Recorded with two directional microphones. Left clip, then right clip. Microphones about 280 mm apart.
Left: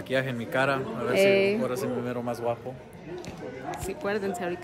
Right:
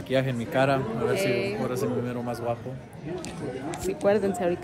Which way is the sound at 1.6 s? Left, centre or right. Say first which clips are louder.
Right 1 dB; centre.